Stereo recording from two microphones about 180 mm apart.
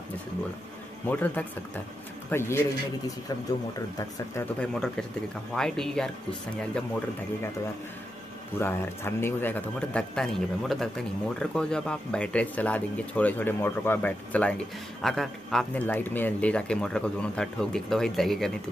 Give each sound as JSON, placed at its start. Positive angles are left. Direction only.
{"t": 1.0, "sound": "speech", "side_deg": 10}
{"t": 4.6, "sound": "speech", "side_deg": 5}
{"t": 8.5, "sound": "speech", "side_deg": 15}